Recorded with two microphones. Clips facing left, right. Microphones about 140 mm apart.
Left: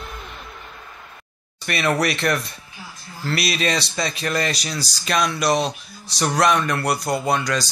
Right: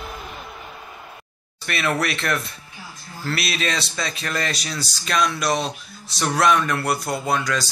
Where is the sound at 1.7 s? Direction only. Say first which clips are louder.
Left 3 dB; centre (ahead or behind).